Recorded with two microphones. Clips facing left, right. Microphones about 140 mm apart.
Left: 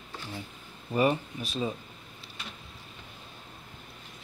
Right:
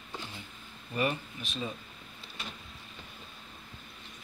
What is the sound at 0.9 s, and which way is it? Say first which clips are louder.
Speech: left 6 dB; 35° left (ahead or behind).